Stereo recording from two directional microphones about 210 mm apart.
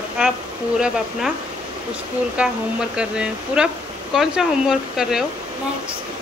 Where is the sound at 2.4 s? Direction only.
5° right (ahead or behind).